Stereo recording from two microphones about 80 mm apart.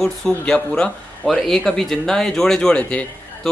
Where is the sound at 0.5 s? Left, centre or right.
Centre.